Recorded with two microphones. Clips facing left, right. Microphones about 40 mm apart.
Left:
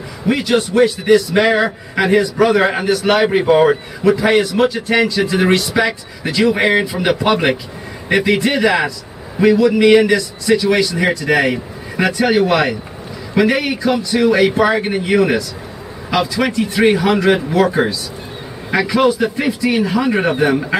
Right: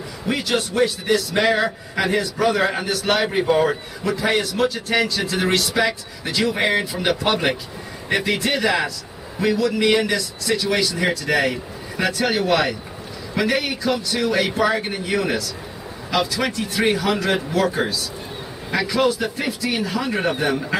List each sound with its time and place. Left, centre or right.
0.3 s a man's voice: centre
17.6 s a man's voice: centre